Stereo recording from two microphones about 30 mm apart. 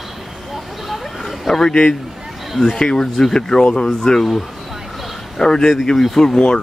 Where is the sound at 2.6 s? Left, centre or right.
Left.